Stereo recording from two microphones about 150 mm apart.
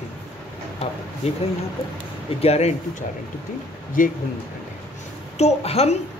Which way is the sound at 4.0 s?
65° left (ahead or behind).